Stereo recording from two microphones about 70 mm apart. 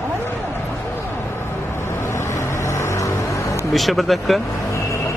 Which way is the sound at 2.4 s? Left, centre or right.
Left.